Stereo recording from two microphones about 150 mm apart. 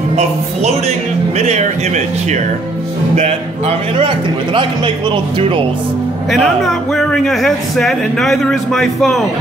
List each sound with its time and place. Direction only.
0.1 s speech: 45° right (ahead or behind)
1.4 s music: 50° right (ahead or behind)
3.2 s speech: 45° right (ahead or behind)
4.6 s speech: 35° right (ahead or behind)
6.3 s speech: centre (ahead or behind)